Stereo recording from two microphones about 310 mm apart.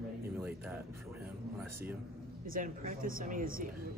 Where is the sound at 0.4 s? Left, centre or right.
Centre.